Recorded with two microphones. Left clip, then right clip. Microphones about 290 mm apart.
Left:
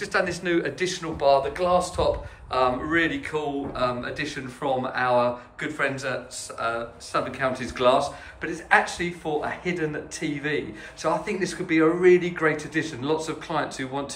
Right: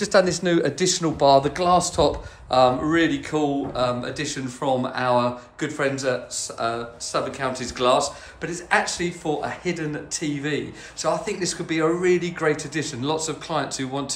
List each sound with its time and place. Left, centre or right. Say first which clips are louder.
0.0 s speech: right 6 dB; centre